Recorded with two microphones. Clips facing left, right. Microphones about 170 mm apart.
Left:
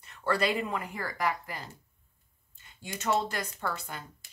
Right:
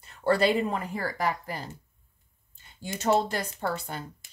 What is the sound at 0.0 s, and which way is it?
Speech, 30° right (ahead or behind).